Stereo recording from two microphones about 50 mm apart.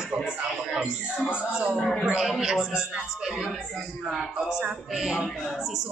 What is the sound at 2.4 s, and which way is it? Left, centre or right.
Speech, centre.